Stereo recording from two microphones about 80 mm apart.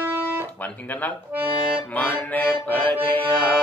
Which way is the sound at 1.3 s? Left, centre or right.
Right.